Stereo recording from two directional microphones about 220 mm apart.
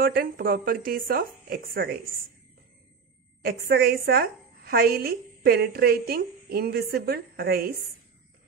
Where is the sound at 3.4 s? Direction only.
45° right (ahead or behind).